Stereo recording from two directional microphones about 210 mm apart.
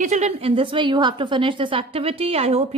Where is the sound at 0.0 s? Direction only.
35° right (ahead or behind).